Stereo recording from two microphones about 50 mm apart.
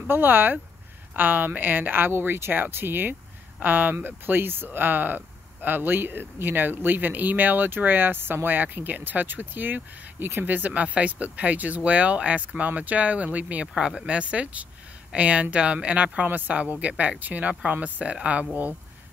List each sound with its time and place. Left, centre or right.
0.1 s speech: right